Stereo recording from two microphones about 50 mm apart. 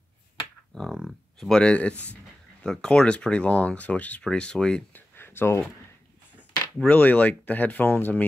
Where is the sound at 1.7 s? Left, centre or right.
Left.